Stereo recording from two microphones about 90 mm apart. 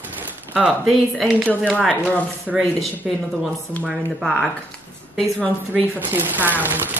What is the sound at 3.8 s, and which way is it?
Speech, centre (ahead or behind).